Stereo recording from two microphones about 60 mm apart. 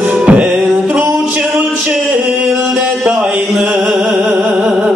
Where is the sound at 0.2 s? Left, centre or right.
Centre.